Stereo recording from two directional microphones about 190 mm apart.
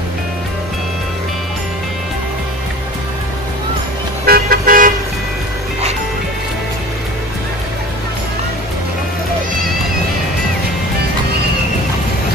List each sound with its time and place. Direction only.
4.3 s car: 50° right (ahead or behind)